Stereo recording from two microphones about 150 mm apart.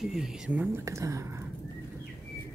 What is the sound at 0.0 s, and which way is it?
Speech, 5° right (ahead or behind).